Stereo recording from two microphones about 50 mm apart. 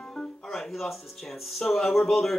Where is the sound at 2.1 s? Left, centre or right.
Centre.